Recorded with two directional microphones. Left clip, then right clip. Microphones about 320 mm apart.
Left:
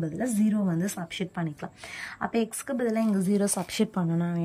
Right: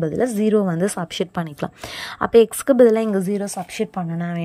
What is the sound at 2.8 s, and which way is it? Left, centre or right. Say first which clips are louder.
Speech: right 12 dB; centre.